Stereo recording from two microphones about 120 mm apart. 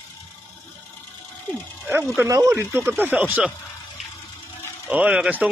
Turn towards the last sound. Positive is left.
turn(degrees=-10)  # may be behind; listen again after turning